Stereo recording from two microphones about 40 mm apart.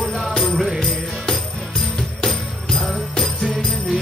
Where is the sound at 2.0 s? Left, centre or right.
Centre.